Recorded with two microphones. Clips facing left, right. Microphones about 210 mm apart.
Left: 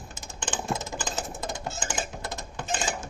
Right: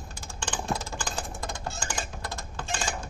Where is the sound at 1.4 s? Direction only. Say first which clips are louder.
Left 2 dB; 20° left (ahead or behind).